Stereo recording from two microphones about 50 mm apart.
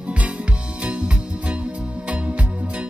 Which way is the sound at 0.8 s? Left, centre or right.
Right.